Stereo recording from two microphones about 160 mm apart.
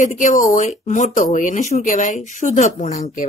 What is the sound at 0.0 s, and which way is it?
Speech, 50° left (ahead or behind).